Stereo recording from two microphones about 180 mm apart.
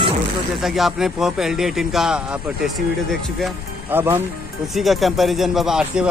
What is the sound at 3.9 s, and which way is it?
Speech, 10° right (ahead or behind).